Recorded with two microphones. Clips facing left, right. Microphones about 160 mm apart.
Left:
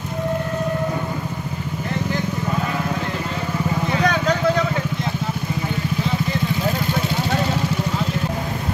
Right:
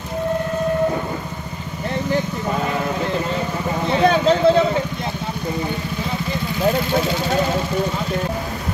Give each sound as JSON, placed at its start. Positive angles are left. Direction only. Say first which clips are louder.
{"t": 3.9, "sound": "vehicle", "louder": "right 6 dB", "side_deg": -25}